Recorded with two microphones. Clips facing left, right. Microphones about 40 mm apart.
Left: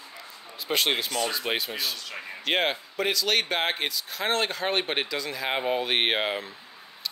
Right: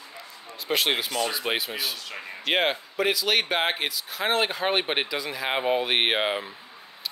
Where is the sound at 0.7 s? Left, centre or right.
Centre.